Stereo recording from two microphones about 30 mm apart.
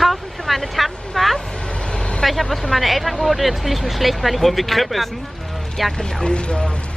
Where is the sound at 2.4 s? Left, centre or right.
Centre.